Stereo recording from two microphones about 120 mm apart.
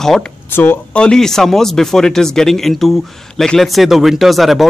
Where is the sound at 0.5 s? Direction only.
20° left (ahead or behind).